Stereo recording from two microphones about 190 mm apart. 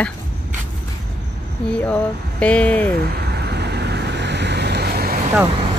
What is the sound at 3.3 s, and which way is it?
Vehicle, 60° right (ahead or behind).